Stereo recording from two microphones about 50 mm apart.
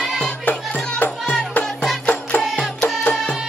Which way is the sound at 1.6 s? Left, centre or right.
Centre.